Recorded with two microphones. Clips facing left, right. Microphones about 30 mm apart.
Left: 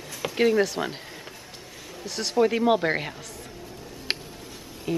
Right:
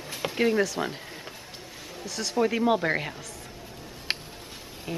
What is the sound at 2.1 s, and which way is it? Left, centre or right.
Speech, centre.